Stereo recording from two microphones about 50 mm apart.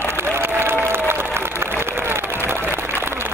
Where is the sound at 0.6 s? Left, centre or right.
Right.